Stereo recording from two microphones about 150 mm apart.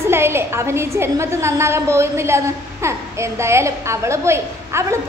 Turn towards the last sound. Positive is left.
turn(degrees=-20)  # may be behind; listen again after turning